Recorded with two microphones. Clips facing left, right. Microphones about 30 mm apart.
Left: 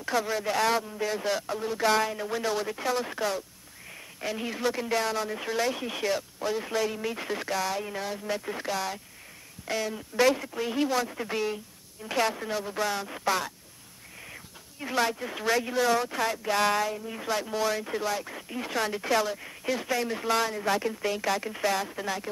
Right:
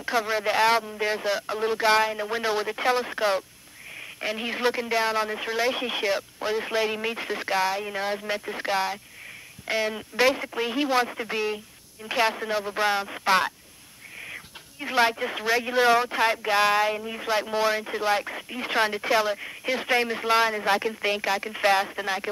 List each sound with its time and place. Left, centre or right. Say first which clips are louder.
0.0 s a woman's voice: right 3 dB; right
4.7 s a woman's voice: right 4 dB; right
7.2 s speech: right 2 dB; centre
7.4 s a woman's voice: right 6 dB; right
8.4 s speech: right 2 dB; centre
8.6 s a woman's voice: right 9 dB; right
11.1 s a woman's voice: right 2 dB; centre
14.2 s a sound: right 6 dB; right
15.3 s a woman's voice: right 3 dB; right
18.9 s a woman's voice: right 3 dB; right
21.2 s a woman's voice: right 2 dB; centre
21.5 s a woman's voice: right 6 dB; right